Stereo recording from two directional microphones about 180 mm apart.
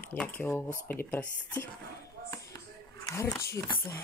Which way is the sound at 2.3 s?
15° left (ahead or behind).